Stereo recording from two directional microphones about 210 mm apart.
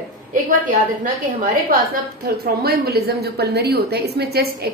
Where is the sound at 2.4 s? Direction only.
50° right (ahead or behind).